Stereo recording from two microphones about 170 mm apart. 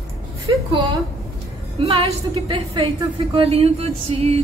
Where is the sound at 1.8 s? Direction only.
35° right (ahead or behind).